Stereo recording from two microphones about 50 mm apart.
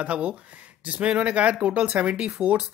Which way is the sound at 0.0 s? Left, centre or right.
Right.